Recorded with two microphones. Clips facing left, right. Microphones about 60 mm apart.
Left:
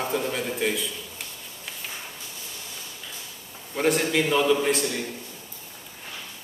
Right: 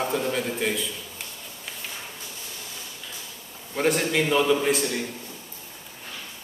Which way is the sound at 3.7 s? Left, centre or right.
Centre.